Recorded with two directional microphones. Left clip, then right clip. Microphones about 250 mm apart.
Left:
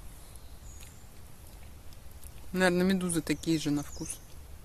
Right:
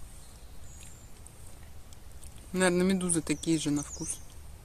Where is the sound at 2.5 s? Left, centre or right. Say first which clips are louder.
Even; centre.